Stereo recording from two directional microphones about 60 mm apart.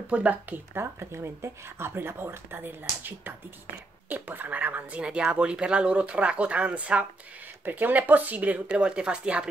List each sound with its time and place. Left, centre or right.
0.1 s speech: right
0.7 s speech: right
5.0 s speech: centre